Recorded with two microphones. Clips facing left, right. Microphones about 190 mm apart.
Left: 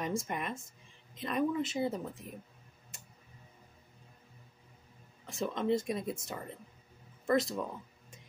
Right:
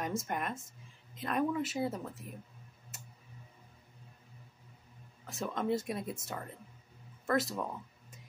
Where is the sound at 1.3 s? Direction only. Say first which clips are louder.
Left 1 dB; 5° right (ahead or behind).